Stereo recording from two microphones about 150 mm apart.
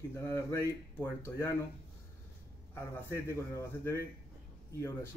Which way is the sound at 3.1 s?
15° left (ahead or behind).